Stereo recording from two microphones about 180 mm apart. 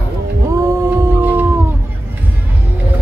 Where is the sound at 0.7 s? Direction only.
15° right (ahead or behind).